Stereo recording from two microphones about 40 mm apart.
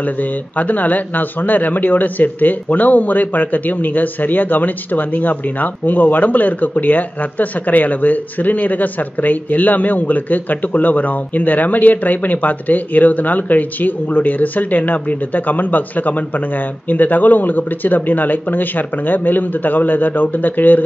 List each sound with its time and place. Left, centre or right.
0.0 s speech: left